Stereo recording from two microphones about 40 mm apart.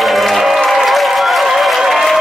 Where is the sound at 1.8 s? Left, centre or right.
Centre.